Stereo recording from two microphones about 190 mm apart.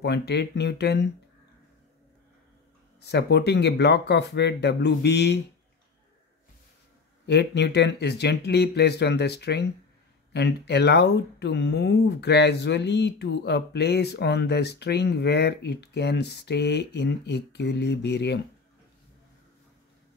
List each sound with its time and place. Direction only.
0.0 s speech: 60° left (ahead or behind)
3.0 s speech: 60° left (ahead or behind)
7.2 s speech: 65° left (ahead or behind)